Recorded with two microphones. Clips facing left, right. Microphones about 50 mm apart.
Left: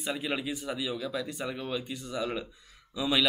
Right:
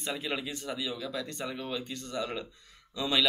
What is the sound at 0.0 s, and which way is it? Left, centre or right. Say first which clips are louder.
Speech: left 2 dB; centre.